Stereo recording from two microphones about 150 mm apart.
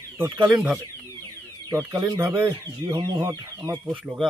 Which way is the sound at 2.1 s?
20° right (ahead or behind).